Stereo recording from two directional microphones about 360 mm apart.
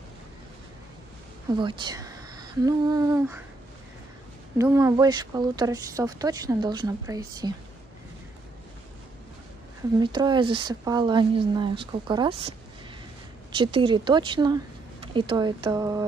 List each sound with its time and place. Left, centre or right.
1.5 s speech: centre
4.6 s speech: centre
9.9 s speech: centre
13.6 s speech: centre